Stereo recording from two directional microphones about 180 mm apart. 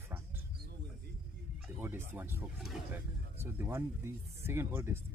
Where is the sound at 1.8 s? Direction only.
10° right (ahead or behind).